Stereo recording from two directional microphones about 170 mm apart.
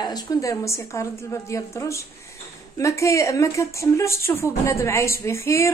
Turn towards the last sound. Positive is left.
turn(degrees=15)  # may be behind; listen again after turning